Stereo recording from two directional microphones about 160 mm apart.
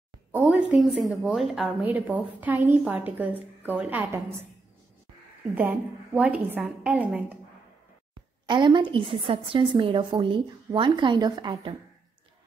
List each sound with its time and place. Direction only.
0.3 s a sound: 10° right (ahead or behind)
1.0 s a woman's voice: 5° right (ahead or behind)
5.6 s a woman's voice: 10° right (ahead or behind)
8.5 s a woman's voice: 30° right (ahead or behind)